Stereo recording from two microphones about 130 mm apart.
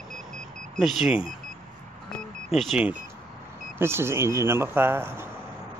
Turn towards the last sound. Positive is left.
turn(degrees=-20)  # may be behind; listen again after turning